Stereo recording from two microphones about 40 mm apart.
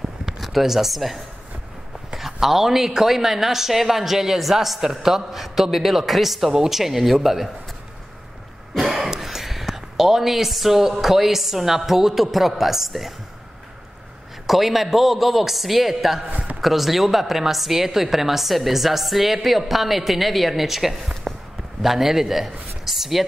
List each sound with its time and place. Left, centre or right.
0.4 s a woman's voice: centre
8.7 s speech: centre
14.4 s a woman's voice: centre
16.3 s a sound: right
16.6 s a woman's voice: centre